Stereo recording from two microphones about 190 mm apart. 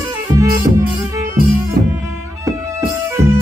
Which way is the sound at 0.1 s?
15° right (ahead or behind).